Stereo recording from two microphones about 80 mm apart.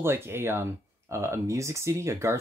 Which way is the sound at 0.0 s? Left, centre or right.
Right.